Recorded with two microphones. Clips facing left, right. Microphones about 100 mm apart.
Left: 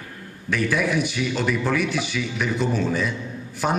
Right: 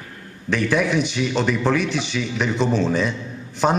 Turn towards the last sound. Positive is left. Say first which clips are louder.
# right 5 dB
turn(degrees=-20)  # may be behind; listen again after turning